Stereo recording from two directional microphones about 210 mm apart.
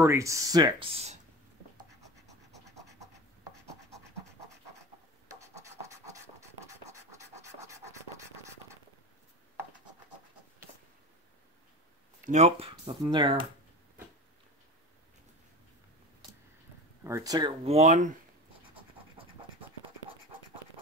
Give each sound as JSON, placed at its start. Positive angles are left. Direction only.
{"t": 0.0, "sound": "speech", "side_deg": -15}
{"t": 1.8, "sound": "scratch", "side_deg": -15}
{"t": 5.4, "sound": "scratch", "side_deg": -15}
{"t": 12.3, "sound": "speech", "side_deg": -30}
{"t": 17.0, "sound": "speech", "side_deg": -15}